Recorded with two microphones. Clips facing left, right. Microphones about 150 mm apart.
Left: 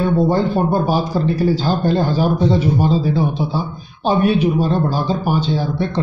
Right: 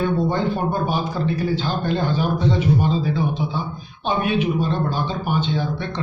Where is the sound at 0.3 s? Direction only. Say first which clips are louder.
Left 5 dB; 35° left (ahead or behind).